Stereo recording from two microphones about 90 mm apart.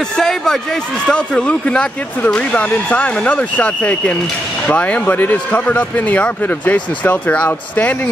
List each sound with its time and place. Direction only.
0.0 s speech: 5° left (ahead or behind)